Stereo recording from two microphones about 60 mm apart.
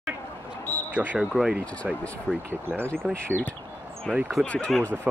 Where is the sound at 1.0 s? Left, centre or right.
Right.